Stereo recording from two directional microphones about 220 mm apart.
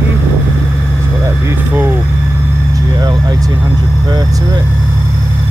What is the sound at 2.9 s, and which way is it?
Speech, 20° right (ahead or behind).